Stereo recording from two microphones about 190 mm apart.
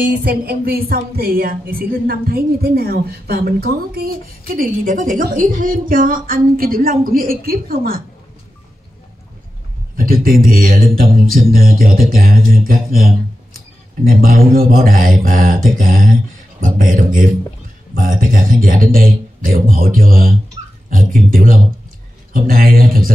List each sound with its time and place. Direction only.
0.2 s a woman's voice: 55° right (ahead or behind)
9.9 s a woman's voice: 50° right (ahead or behind)